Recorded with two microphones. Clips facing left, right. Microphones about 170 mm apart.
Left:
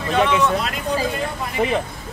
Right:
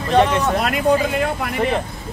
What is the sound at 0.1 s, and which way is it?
Speech, 45° right (ahead or behind).